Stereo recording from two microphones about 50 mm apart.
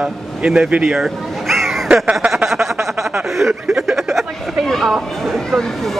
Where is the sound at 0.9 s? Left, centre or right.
Centre.